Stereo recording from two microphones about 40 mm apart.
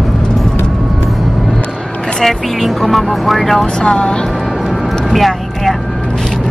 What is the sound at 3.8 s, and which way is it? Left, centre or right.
Speech, left.